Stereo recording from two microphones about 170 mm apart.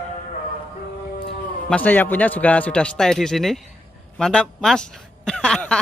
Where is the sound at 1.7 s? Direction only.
10° left (ahead or behind).